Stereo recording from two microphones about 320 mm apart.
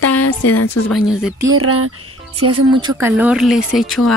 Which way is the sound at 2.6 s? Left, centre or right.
Centre.